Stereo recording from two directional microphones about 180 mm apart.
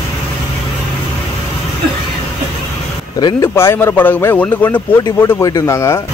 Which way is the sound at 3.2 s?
15° left (ahead or behind).